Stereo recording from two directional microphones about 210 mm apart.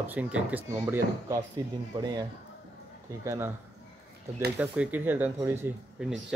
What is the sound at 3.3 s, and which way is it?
Speech, 10° right (ahead or behind).